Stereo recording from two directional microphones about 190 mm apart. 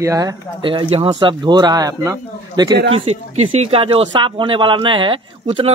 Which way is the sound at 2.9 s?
35° right (ahead or behind).